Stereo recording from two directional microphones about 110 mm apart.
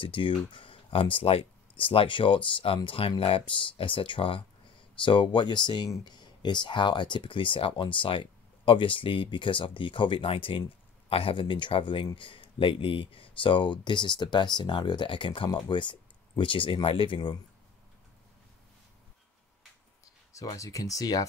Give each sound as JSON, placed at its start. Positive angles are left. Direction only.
{"t": 0.0, "sound": "speech", "side_deg": 50}
{"t": 20.3, "sound": "speech", "side_deg": 30}